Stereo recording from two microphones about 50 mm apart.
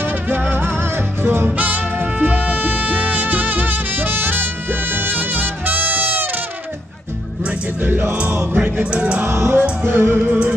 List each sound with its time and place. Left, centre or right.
0.3 s music: right
1.2 s music: right
1.6 s music: right
7.8 s music: right
8.9 s music: right
9.3 s music: right
10.1 s music: right